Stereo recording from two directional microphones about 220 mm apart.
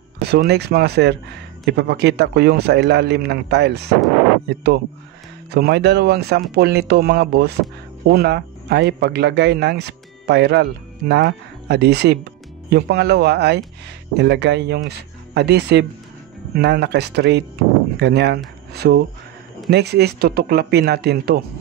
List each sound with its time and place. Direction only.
0.2 s a man's voice: 45° right (ahead or behind)
5.5 s a man's voice: 50° right (ahead or behind)